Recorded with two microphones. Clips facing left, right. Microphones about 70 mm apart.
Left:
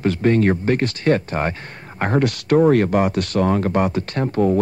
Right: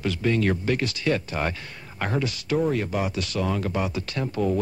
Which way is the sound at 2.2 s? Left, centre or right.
Left.